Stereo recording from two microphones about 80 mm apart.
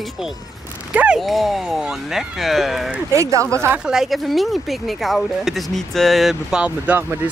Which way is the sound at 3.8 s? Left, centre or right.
Centre.